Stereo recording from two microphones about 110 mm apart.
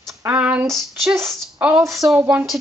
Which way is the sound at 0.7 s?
Centre (ahead or behind).